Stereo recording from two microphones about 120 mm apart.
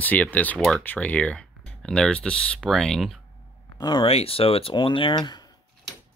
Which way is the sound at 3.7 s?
40° left (ahead or behind).